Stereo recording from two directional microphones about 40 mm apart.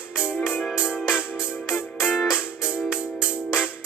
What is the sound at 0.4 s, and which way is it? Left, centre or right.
Music, centre.